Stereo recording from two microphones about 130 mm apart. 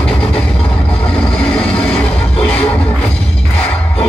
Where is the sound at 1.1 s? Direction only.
10° left (ahead or behind).